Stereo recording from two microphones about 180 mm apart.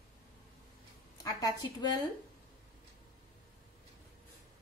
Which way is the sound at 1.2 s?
20° left (ahead or behind).